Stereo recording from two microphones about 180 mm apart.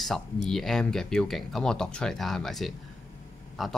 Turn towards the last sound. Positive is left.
turn(degrees=0)  # may be behind; listen again after turning